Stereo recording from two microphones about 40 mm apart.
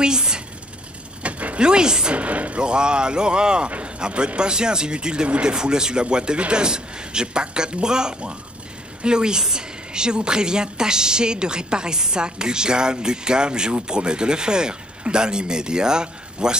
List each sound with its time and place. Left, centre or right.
0.0 s a sound: centre
1.2 s mechanisms: right
1.6 s a woman's voice: right
2.1 s speech: right
2.6 s a woman's voice: right